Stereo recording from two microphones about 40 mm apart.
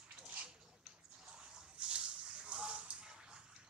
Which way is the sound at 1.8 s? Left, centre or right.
Right.